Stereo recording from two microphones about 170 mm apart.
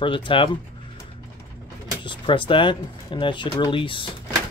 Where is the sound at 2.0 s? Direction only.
30° left (ahead or behind).